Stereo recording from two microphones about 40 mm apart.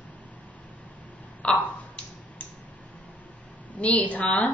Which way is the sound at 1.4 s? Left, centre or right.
Left.